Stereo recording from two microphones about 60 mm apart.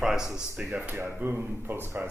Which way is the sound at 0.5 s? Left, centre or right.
Right.